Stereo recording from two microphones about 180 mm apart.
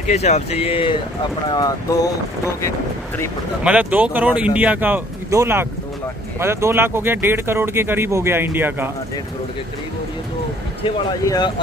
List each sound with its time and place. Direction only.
0.0 s speech: 40° left (ahead or behind); by 2.7 s 15° left (ahead or behind)
3.6 s speech: 10° right (ahead or behind)
11.2 s speech: 20° left (ahead or behind)